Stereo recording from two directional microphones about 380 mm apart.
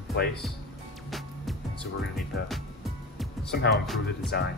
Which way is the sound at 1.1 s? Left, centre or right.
Centre.